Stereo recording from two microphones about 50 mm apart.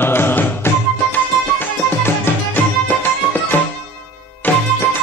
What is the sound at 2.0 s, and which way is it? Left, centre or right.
Music, left.